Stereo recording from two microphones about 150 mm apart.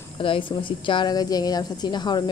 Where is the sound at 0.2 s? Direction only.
35° left (ahead or behind).